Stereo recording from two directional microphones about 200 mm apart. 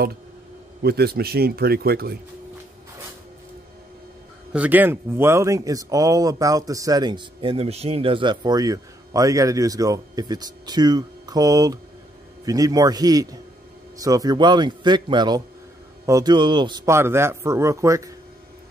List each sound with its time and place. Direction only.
0.8 s a man's voice: 50° right (ahead or behind)
4.5 s a man's voice: 5° right (ahead or behind)